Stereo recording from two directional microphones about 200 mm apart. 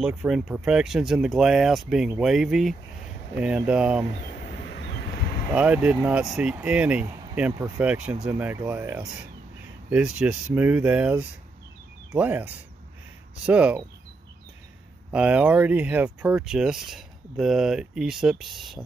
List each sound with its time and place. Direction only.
0.0 s speech: 5° right (ahead or behind)
4.6 s vehicle: 55° left (ahead or behind)
5.5 s speech: 5° right (ahead or behind)
15.0 s speech: 5° right (ahead or behind)